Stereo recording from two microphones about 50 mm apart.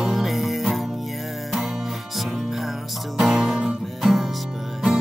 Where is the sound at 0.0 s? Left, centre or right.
Centre.